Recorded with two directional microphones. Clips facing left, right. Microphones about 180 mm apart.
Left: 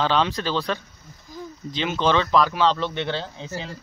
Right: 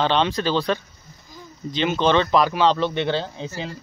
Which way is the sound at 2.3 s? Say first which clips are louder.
Right 2 dB; 10° right (ahead or behind).